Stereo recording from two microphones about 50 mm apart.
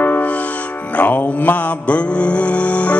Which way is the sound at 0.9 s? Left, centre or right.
Left.